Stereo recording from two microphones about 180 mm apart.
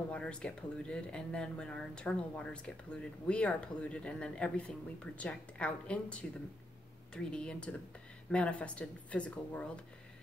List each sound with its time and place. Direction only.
0.1 s speech: 5° left (ahead or behind)